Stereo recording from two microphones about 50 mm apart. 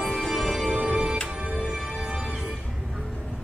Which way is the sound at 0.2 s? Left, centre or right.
Centre.